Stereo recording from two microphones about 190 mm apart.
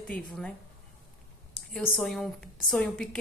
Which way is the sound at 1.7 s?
Centre (ahead or behind).